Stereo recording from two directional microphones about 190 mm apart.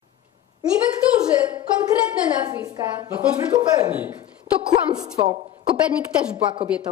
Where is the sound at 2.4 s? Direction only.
20° right (ahead or behind).